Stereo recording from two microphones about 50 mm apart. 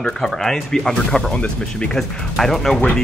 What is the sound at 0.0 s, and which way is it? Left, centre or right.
Speech, centre.